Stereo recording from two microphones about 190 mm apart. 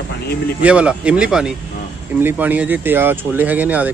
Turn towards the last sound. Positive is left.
turn(degrees=-10)  # may be behind; listen again after turning